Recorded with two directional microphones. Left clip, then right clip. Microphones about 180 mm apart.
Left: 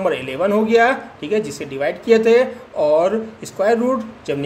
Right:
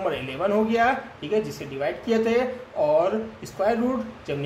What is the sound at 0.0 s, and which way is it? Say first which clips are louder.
Speech: left 7 dB; 40° left (ahead or behind).